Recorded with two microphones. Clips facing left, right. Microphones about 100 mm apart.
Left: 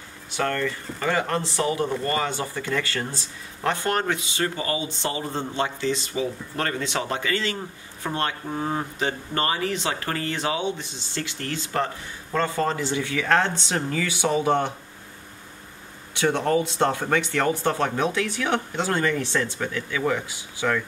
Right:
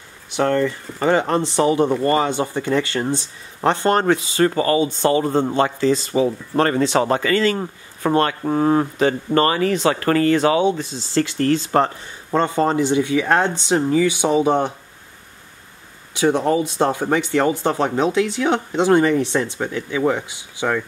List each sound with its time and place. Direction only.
0.4 s speech: 20° right (ahead or behind); by 4.5 s 35° right (ahead or behind)
4.6 s speech: 50° right (ahead or behind)
5.8 s speech: 40° right (ahead or behind)
7.5 s speech: 80° right
11.4 s speech: 40° right (ahead or behind); by 14.7 s 15° right (ahead or behind)
16.2 s speech: 15° right (ahead or behind)